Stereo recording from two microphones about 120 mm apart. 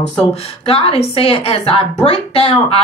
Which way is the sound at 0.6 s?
50° left (ahead or behind).